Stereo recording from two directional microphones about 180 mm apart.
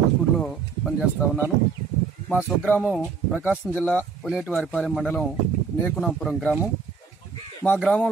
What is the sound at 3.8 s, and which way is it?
Speech, 5° left (ahead or behind).